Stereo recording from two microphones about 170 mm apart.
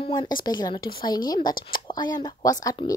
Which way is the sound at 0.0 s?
25° left (ahead or behind).